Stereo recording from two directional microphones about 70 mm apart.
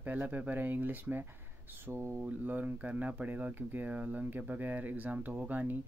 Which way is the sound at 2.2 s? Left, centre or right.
Right.